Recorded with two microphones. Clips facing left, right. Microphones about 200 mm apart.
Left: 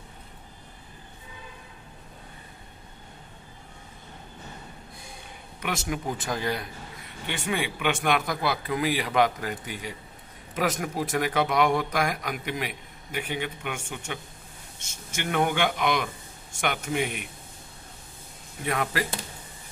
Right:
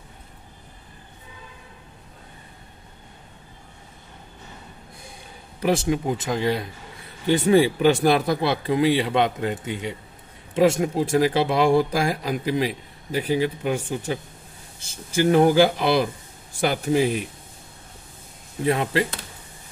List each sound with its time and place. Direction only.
5.6 s speech: 30° right (ahead or behind)
7.2 s a man's voice: 40° right (ahead or behind)
18.6 s speech: 30° right (ahead or behind)